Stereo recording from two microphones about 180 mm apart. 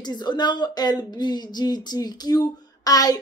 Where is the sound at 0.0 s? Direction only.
25° left (ahead or behind).